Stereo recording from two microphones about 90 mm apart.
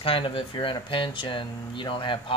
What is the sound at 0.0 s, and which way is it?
Speech, 85° left.